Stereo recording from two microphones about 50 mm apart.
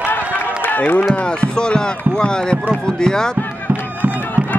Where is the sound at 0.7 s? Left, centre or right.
Left.